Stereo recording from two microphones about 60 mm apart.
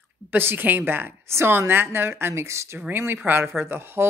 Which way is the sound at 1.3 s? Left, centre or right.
Right.